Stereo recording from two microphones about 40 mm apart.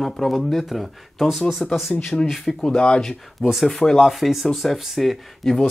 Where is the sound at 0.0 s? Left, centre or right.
Centre.